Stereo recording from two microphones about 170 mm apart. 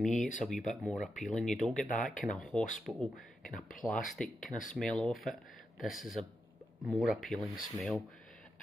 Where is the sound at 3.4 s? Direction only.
50° left (ahead or behind).